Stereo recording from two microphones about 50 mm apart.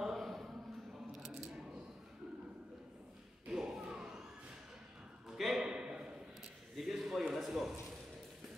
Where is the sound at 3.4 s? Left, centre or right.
Centre.